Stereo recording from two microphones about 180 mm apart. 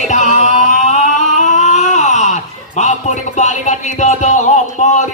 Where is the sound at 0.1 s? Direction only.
40° left (ahead or behind).